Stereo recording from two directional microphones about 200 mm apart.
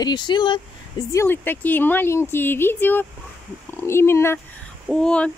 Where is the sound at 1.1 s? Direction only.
10° left (ahead or behind).